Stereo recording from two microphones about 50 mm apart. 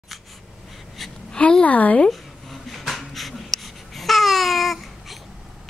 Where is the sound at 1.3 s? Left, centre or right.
Centre.